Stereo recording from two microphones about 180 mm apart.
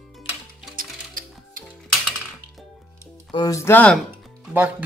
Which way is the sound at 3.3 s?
20° left (ahead or behind).